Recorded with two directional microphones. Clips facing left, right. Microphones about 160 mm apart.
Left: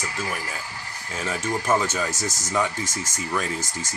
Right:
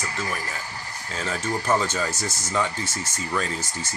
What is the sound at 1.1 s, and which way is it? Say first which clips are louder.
Speech: left 1 dB; 10° left (ahead or behind).